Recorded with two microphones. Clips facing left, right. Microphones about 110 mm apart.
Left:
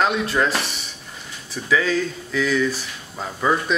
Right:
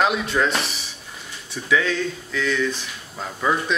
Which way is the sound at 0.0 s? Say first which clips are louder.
Even; centre (ahead or behind).